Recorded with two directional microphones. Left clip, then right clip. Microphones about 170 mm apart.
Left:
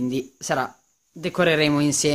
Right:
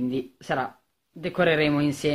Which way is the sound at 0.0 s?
30° left (ahead or behind).